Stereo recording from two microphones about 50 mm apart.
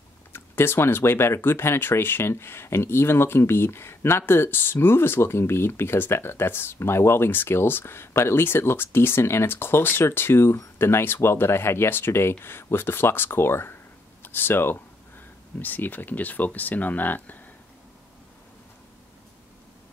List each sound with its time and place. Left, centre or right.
0.3 s speech: left
14.2 s speech: left